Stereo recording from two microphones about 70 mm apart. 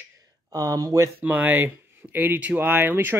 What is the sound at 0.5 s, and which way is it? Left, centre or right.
Speech, right.